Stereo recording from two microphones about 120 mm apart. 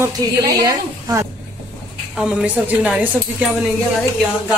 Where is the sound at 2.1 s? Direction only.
5° right (ahead or behind).